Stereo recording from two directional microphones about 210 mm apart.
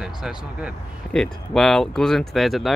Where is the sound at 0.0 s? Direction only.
5° right (ahead or behind).